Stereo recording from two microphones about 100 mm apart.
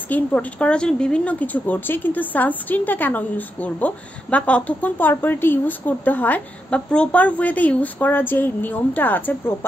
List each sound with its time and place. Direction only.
0.1 s speech: 15° left (ahead or behind)